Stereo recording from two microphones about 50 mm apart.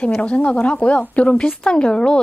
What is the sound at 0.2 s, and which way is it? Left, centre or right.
Speech, left.